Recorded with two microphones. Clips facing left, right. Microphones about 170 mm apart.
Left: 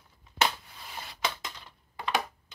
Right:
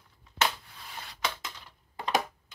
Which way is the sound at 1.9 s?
40° right (ahead or behind).